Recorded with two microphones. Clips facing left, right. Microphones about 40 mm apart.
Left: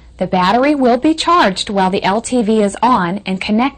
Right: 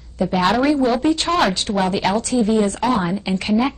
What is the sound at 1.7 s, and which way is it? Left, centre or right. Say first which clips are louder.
A woman's voice: left 5 dB; left.